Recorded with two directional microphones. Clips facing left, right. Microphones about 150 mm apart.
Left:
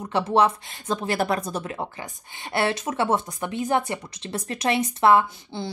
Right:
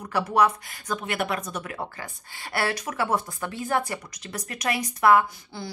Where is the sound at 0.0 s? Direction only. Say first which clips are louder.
Left 2 dB; 25° left (ahead or behind).